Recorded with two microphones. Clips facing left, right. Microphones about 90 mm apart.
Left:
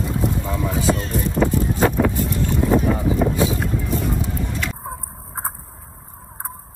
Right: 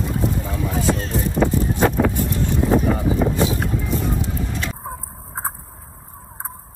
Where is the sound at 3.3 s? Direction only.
20° right (ahead or behind).